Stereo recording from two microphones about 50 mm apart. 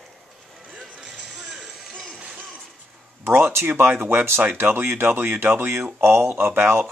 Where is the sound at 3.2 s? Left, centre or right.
Right.